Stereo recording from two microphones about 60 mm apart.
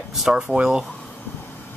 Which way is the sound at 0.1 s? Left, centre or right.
Centre.